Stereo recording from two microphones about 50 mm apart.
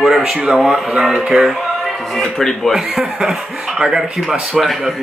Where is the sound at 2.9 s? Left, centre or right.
Centre.